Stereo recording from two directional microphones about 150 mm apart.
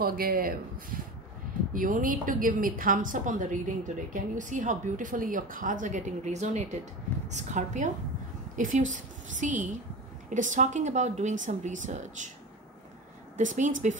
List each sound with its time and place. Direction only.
0.0 s speech: 80° right
1.7 s a woman's voice: 65° right (ahead or behind)
13.4 s a woman's voice: 60° right (ahead or behind)